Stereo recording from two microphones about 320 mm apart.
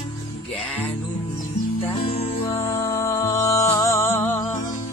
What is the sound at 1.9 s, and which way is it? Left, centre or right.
Music, centre.